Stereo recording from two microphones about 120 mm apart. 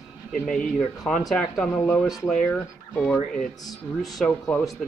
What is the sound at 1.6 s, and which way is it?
Speech, 25° left (ahead or behind).